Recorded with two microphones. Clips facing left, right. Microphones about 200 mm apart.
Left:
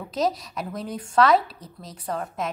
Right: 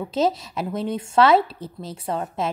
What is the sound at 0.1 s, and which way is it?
Speech, 25° right (ahead or behind).